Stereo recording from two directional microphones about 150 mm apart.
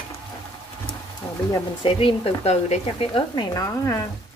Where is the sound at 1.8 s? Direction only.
35° left (ahead or behind).